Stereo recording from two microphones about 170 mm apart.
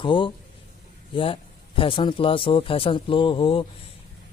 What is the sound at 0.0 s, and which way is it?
A man's voice, 30° left (ahead or behind).